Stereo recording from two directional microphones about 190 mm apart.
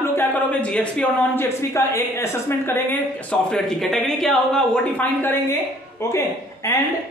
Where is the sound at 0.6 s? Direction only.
5° left (ahead or behind).